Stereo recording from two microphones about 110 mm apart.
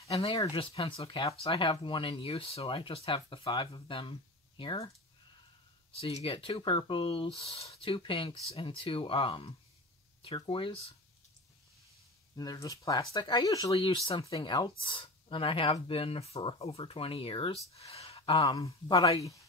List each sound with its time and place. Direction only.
0.5 s speech: 55° left (ahead or behind)
5.9 s speech: 65° left (ahead or behind)
12.4 s speech: 35° left (ahead or behind)
13.8 s speech: 50° left (ahead or behind)
18.5 s speech: 35° left (ahead or behind)